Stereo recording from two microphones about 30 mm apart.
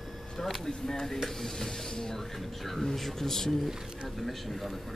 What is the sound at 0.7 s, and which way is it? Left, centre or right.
Speech, centre.